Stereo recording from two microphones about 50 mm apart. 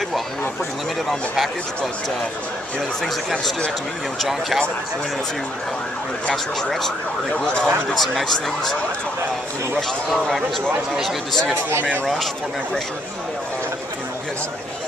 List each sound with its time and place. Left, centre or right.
4.2 s speech: centre
6.3 s speech: centre
7.3 s a man's voice: centre
7.9 s speech: centre
9.8 s a man's voice: centre